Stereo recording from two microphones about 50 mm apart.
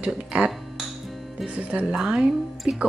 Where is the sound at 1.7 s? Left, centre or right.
Right.